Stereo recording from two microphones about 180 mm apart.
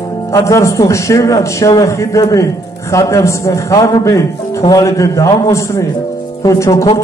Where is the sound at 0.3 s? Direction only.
15° left (ahead or behind).